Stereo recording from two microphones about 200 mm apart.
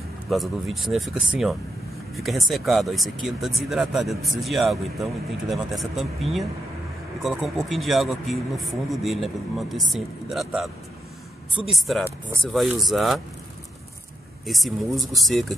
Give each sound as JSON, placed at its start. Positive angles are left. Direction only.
{"t": 0.3, "sound": "speech", "side_deg": 0}
{"t": 7.2, "sound": "speech", "side_deg": 0}
{"t": 14.4, "sound": "speech", "side_deg": 0}